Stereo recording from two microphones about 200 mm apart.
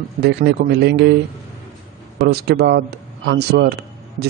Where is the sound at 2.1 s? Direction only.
55° right (ahead or behind).